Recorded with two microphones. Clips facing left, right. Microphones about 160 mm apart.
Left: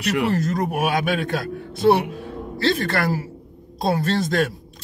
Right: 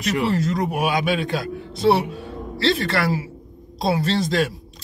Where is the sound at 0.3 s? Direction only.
50° left (ahead or behind).